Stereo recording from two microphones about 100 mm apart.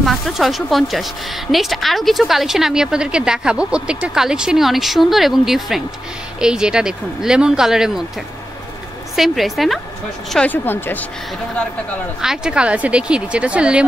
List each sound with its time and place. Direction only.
0.0 s a woman's voice: centre (ahead or behind)
9.1 s a woman's voice: centre (ahead or behind)
10.5 s speech: 20° left (ahead or behind)
12.2 s speech: 5° right (ahead or behind)